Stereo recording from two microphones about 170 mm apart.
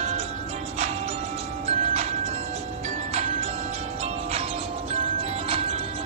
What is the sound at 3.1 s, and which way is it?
Music, 40° right (ahead or behind).